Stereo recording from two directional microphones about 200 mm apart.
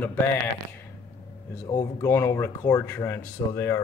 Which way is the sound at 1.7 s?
15° left (ahead or behind).